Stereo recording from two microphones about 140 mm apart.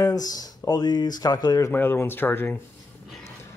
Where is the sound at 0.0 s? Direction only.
25° left (ahead or behind).